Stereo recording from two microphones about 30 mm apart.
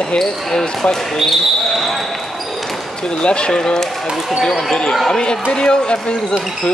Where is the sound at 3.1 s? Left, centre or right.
Left.